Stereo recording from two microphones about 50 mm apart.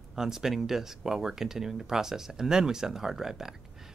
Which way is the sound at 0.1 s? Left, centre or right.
Centre.